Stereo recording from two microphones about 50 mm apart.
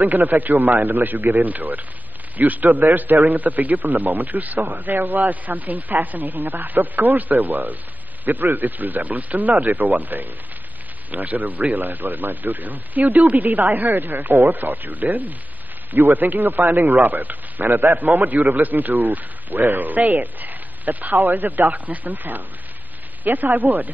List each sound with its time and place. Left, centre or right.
0.0 s a man's voice: right